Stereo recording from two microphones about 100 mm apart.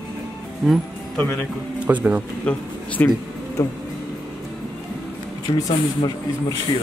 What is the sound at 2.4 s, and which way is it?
Speech, 15° left (ahead or behind).